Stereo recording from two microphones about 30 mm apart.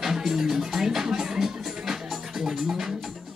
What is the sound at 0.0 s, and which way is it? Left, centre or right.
Music, centre.